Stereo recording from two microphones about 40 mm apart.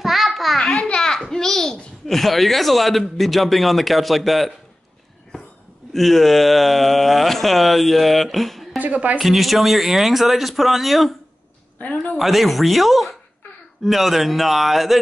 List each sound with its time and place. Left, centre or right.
0.0 s a sound: centre
0.8 s a sound: centre
1.3 s babbling: centre
2.0 s speech: centre
5.9 s speech: centre
8.7 s speech: right
9.2 s speech: centre
11.8 s a woman's voice: left
12.2 s speech: centre